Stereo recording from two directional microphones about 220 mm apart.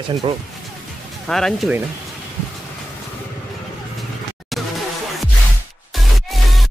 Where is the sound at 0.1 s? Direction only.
25° right (ahead or behind).